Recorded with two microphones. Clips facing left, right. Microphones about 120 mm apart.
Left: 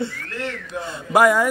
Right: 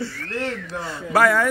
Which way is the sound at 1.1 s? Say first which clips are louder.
Left 2 dB; 15° left (ahead or behind).